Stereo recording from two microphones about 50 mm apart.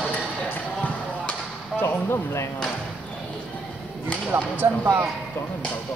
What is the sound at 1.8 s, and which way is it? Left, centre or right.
Speech, left.